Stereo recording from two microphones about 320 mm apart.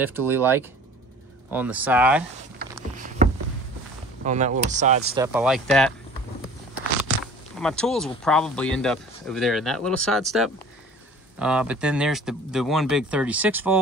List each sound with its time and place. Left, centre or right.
0.0 s speech: centre
2.6 s a sound: right
4.2 s speech: right
5.2 s speech: centre
7.6 s speech: centre